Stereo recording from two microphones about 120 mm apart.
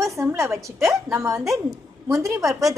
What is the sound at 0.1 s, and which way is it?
A woman's voice, 25° right (ahead or behind).